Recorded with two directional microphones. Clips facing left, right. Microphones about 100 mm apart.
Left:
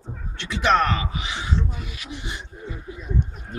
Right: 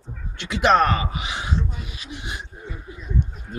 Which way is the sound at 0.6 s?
20° right (ahead or behind).